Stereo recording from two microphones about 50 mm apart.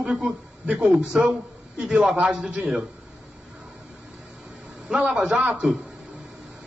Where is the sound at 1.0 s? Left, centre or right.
Centre.